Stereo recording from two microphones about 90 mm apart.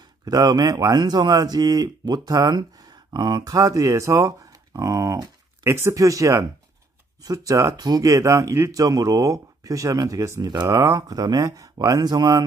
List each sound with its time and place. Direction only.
0.2 s a man's voice: 45° right (ahead or behind)
7.7 s speech: 45° right (ahead or behind)
10.4 s a man's voice: 50° right (ahead or behind)
10.7 s a man's voice: 35° right (ahead or behind)